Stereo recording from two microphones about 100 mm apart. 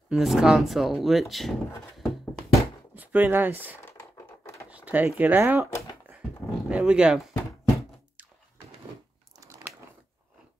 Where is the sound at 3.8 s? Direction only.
25° left (ahead or behind).